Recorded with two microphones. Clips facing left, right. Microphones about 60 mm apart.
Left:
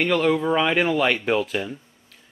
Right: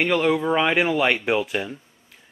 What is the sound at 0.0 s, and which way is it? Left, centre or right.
Speech, centre.